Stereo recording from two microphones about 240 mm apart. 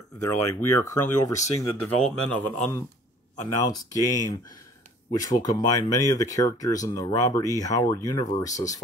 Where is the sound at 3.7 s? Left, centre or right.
Centre.